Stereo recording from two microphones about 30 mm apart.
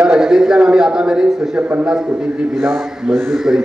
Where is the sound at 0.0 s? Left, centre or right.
Right.